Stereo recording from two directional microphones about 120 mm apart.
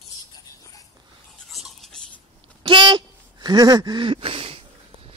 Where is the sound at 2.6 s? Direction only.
45° right (ahead or behind).